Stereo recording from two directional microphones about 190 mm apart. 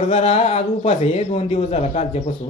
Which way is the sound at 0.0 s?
35° left (ahead or behind).